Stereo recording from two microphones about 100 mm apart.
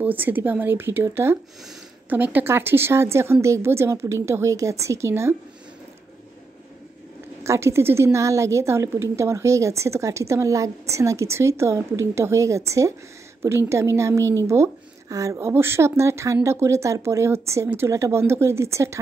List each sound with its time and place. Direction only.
0.0 s a woman's voice: 20° right (ahead or behind)
7.4 s a woman's voice: 30° right (ahead or behind)